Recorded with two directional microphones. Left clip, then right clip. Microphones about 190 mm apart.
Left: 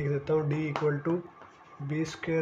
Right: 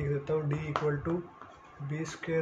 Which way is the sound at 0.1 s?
35° left (ahead or behind).